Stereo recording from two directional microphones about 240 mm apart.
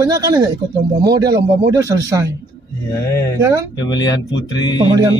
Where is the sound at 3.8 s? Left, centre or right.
Centre.